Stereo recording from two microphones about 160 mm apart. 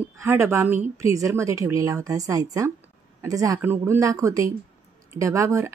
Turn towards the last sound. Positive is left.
turn(degrees=-20)  # may be behind; listen again after turning